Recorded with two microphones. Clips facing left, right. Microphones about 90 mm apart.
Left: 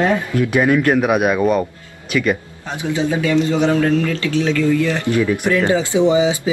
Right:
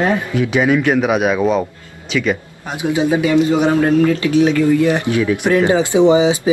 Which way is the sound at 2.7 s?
15° right (ahead or behind).